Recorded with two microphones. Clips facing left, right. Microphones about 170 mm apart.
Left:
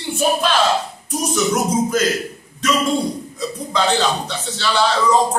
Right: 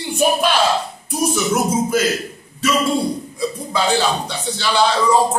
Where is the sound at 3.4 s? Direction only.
10° right (ahead or behind).